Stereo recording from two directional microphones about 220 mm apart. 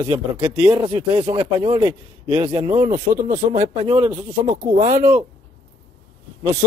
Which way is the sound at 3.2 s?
35° right (ahead or behind).